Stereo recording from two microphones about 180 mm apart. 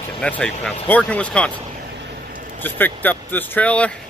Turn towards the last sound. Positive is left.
turn(degrees=5)  # may be behind; listen again after turning